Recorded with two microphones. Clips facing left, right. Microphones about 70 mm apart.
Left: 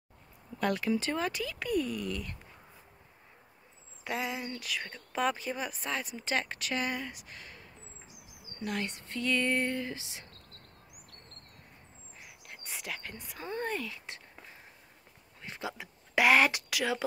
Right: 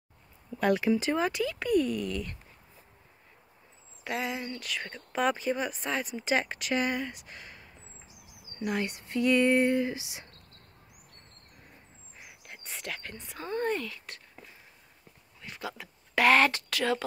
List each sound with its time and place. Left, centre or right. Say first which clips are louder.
0.6 s speech: right 4 dB; centre
4.0 s speech: right 2 dB; centre
12.2 s a sound: right 2 dB; centre
13.6 s speech: right 5 dB; centre
13.8 s speech: right 1 dB; centre
15.4 s speech: even; left